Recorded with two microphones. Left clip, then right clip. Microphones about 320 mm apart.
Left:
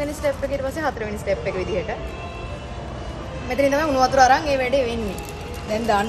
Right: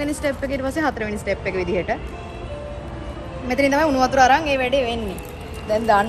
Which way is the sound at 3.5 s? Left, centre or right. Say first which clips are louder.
Right 1 dB; right.